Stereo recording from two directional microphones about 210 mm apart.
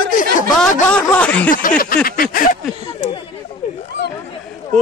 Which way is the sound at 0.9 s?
5° left (ahead or behind).